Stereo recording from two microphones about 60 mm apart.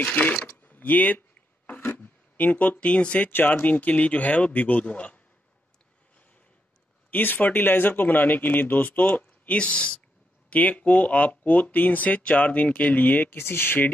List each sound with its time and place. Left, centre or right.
0.0 s speech: left
7.1 s speech: left